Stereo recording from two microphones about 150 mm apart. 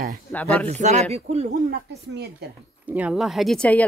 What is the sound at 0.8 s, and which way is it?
Speech, 50° right (ahead or behind).